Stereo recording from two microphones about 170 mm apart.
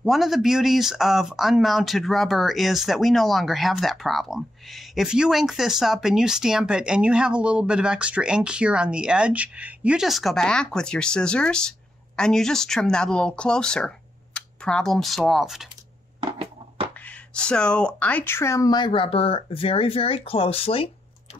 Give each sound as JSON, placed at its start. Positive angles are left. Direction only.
{"t": 0.0, "sound": "speech", "side_deg": 0}
{"t": 16.2, "sound": "a sound", "side_deg": -35}
{"t": 17.3, "sound": "speech", "side_deg": 5}